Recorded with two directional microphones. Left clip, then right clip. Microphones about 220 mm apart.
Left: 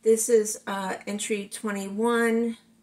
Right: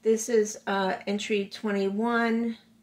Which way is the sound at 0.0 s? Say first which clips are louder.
Left 3 dB; 30° right (ahead or behind).